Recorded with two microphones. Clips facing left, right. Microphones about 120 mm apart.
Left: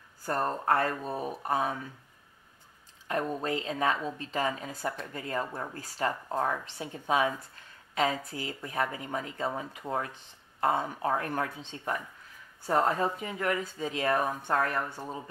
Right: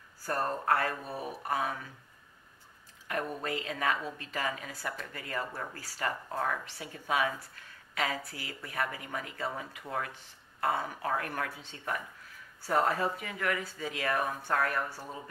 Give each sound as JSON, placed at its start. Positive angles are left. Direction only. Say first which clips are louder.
{"t": 0.2, "sound": "speech", "louder": "left 2 dB", "side_deg": 25}
{"t": 3.1, "sound": "speech", "louder": "left 4 dB", "side_deg": 25}